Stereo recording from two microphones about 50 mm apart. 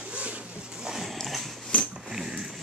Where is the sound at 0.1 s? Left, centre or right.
Right.